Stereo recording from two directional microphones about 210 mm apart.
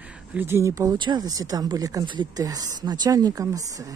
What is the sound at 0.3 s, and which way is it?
Speech, 10° right (ahead or behind).